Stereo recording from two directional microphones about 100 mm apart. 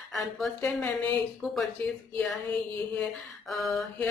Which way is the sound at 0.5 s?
20° left (ahead or behind).